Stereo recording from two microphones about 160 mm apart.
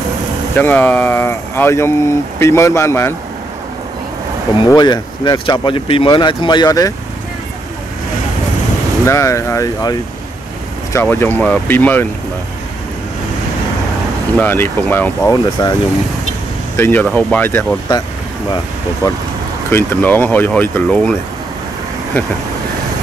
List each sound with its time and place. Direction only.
0.6 s speech: 10° left (ahead or behind)
4.6 s speech: 25° left (ahead or behind)
9.0 s speech: 20° left (ahead or behind)
14.4 s speech: 10° left (ahead or behind)
15.6 s speech: 25° left (ahead or behind)
16.7 s speech: 15° left (ahead or behind)
19.7 s speech: 15° left (ahead or behind)